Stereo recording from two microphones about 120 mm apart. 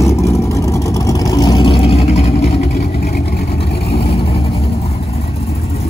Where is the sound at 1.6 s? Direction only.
55° left (ahead or behind).